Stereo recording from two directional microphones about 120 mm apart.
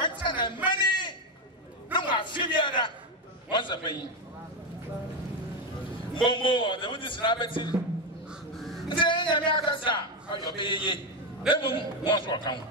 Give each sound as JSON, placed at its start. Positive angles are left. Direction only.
{"t": 0.0, "sound": "music", "side_deg": 40}
{"t": 0.7, "sound": "a sound", "side_deg": 40}
{"t": 3.5, "sound": "a man's voice", "side_deg": 40}
{"t": 6.2, "sound": "a man's voice", "side_deg": 45}
{"t": 8.3, "sound": "crow", "side_deg": 0}
{"t": 8.8, "sound": "a man's voice", "side_deg": 45}